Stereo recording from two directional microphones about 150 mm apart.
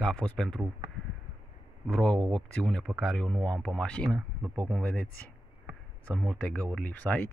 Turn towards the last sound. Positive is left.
turn(degrees=10)  # may be behind; listen again after turning